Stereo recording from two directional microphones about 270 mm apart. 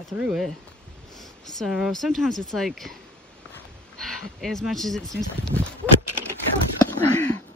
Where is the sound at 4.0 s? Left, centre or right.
Centre.